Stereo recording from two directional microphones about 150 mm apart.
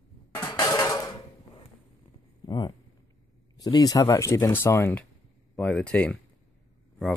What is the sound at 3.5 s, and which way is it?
Speech, 25° left (ahead or behind).